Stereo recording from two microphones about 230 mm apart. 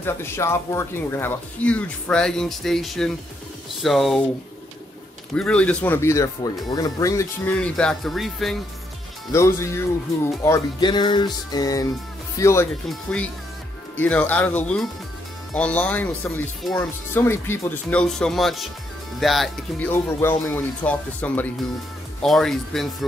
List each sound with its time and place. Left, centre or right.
0.0 s speech: centre
5.3 s speech: centre
9.3 s speech: centre